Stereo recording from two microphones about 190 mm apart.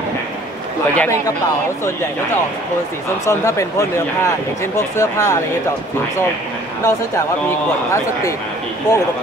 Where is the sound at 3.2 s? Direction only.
15° left (ahead or behind).